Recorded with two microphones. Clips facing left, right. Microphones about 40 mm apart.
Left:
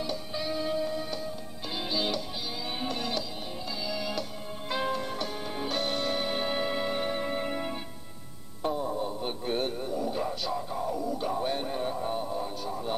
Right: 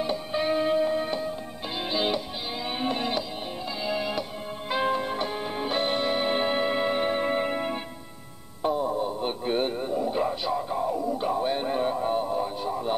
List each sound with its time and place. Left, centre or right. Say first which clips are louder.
0.0 s music: right 6 dB; right
8.6 s radio: right 4 dB; centre
11.6 s a sound: right 6 dB; right